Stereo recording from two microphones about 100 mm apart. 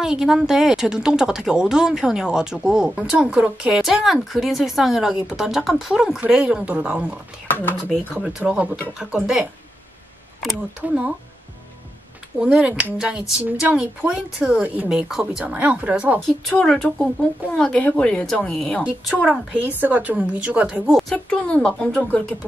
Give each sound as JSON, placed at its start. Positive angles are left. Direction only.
{"t": 0.0, "sound": "speech", "side_deg": -5}
{"t": 7.4, "sound": "speech", "side_deg": 20}
{"t": 8.1, "sound": "speech", "side_deg": -5}
{"t": 10.8, "sound": "speech", "side_deg": -10}
{"t": 12.4, "sound": "speech", "side_deg": -10}
{"t": 16.2, "sound": "speech", "side_deg": 5}
{"t": 19.5, "sound": "speech", "side_deg": -15}
{"t": 20.9, "sound": "speech", "side_deg": 10}